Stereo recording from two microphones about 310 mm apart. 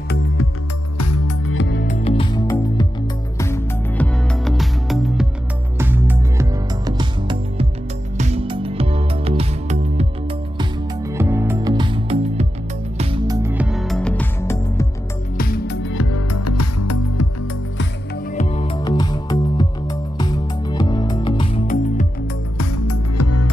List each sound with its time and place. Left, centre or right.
0.9 s music: left; by 14.9 s centre
15.3 s music: left
18.3 s music: left
22.6 s music: left